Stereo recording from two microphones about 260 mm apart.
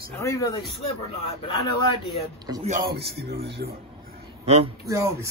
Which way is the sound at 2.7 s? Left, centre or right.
Right.